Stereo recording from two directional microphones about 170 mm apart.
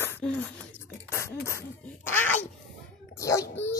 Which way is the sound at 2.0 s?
15° left (ahead or behind).